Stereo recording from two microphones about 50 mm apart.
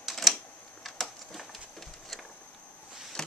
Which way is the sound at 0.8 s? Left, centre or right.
Centre.